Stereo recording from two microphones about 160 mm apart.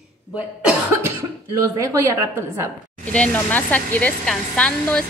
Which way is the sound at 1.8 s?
20° right (ahead or behind).